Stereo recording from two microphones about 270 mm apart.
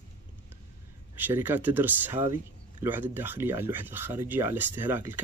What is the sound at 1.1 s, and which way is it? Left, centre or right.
Speech, centre.